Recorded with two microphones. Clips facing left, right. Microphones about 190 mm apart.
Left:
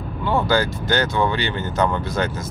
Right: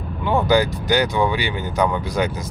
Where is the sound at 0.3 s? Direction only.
15° right (ahead or behind).